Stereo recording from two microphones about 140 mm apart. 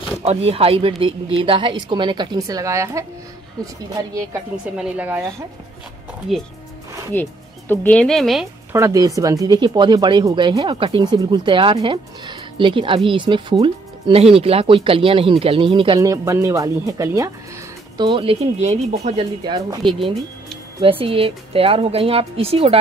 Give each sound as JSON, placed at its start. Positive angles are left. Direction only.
{"t": 0.2, "sound": "speech", "side_deg": -45}
{"t": 4.7, "sound": "a woman's voice", "side_deg": -10}
{"t": 6.3, "sound": "speech", "side_deg": 0}
{"t": 7.2, "sound": "speech", "side_deg": 15}
{"t": 8.7, "sound": "speech", "side_deg": -25}
{"t": 16.0, "sound": "speech", "side_deg": -25}
{"t": 17.9, "sound": "speech", "side_deg": -35}
{"t": 19.1, "sound": "speech", "side_deg": -30}